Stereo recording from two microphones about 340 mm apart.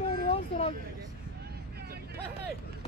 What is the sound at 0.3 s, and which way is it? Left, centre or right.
Vehicle, centre.